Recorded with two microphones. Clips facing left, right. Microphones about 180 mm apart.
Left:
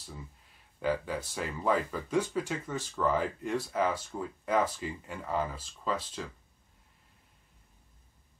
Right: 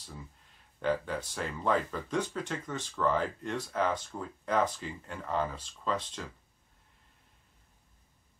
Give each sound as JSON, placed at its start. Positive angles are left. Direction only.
{"t": 0.7, "sound": "speech", "side_deg": 5}